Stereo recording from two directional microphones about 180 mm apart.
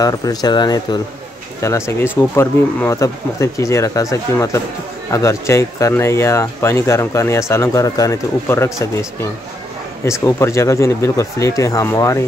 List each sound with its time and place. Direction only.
0.0 s speech: 20° left (ahead or behind)